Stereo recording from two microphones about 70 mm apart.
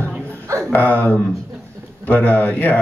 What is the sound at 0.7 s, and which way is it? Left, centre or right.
Speech, left.